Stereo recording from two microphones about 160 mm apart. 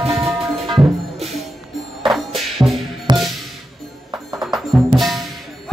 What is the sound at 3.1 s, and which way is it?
Music, 30° right (ahead or behind).